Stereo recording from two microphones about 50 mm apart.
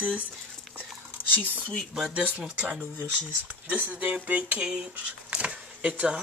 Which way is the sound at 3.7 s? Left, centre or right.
Right.